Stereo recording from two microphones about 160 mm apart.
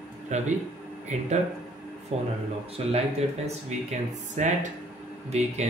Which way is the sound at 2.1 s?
40° right (ahead or behind).